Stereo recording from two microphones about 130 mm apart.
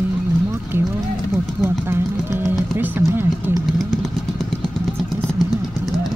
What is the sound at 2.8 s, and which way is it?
Speech, 15° right (ahead or behind).